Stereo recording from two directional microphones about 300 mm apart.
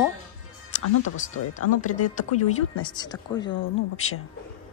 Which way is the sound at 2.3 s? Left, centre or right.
Left.